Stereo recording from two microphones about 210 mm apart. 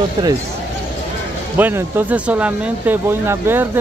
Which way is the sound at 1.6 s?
10° right (ahead or behind).